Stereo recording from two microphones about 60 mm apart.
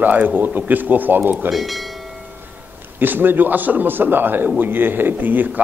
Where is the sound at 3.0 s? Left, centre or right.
Right.